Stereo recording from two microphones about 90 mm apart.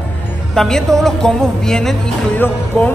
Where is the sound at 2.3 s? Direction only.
20° left (ahead or behind).